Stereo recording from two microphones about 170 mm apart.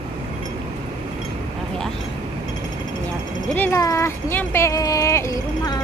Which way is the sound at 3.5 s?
15° left (ahead or behind).